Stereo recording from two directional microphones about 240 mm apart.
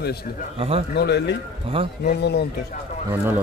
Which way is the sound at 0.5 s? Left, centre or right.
Right.